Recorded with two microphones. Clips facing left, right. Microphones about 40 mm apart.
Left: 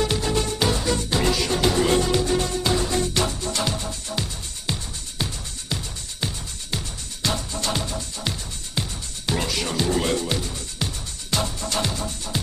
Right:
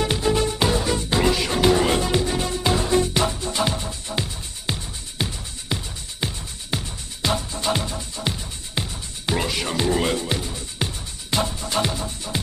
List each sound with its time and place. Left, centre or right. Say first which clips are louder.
0.0 s music: right 2 dB; centre